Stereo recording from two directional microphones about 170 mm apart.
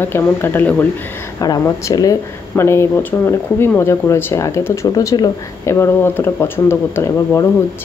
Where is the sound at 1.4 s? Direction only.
20° left (ahead or behind).